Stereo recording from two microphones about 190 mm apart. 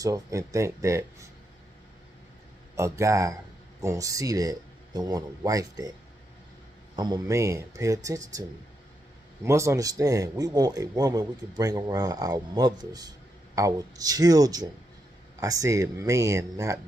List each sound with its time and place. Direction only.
0.0 s speech: 15° right (ahead or behind)
2.7 s speech: 15° right (ahead or behind)
7.0 s a man's voice: 20° right (ahead or behind)